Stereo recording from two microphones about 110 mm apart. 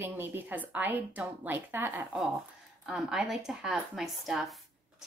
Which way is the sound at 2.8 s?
Centre (ahead or behind).